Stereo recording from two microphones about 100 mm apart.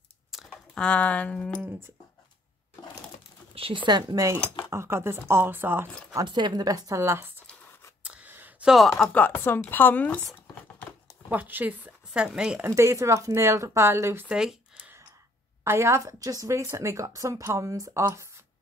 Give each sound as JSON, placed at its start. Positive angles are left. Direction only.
{"t": 0.5, "sound": "speech", "side_deg": 10}
{"t": 3.5, "sound": "speech", "side_deg": -60}
{"t": 4.6, "sound": "speech", "side_deg": -25}
{"t": 6.2, "sound": "speech", "side_deg": -50}
{"t": 7.0, "sound": "speech", "side_deg": -25}
{"t": 8.0, "sound": "a sound", "side_deg": -15}
{"t": 8.6, "sound": "speech", "side_deg": 0}
{"t": 9.1, "sound": "speech", "side_deg": 20}
{"t": 11.2, "sound": "speech", "side_deg": -15}
{"t": 12.6, "sound": "speech", "side_deg": -30}
{"t": 14.3, "sound": "a sound", "side_deg": -5}
{"t": 15.6, "sound": "speech", "side_deg": -30}